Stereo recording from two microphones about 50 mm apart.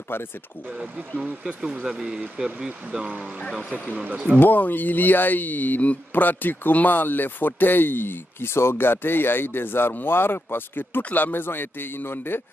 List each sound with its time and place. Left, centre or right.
0.7 s speech: centre
3.9 s speech: right
4.4 s speech: left